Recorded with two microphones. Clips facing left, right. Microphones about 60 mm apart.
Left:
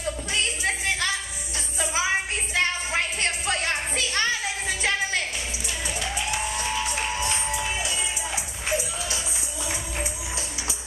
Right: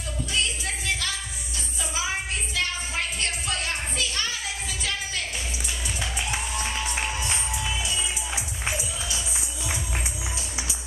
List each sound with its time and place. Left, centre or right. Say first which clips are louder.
0.3 s music: left 1 dB; left
2.5 s music: left 5 dB; left